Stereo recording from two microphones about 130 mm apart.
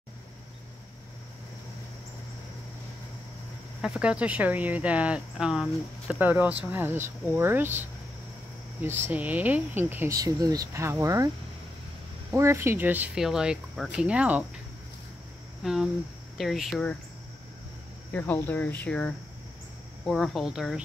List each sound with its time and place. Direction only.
3.8 s speech: 5° right (ahead or behind)
8.8 s speech: 15° right (ahead or behind)
10.1 s speech: 30° right (ahead or behind)
12.4 s speech: 20° right (ahead or behind)
15.6 s speech: 5° right (ahead or behind)
18.1 s speech: 10° left (ahead or behind); by 20.8 s 5° right (ahead or behind)